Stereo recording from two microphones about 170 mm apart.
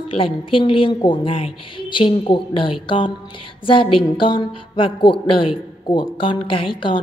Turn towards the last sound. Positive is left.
turn(degrees=30)  # may be behind; listen again after turning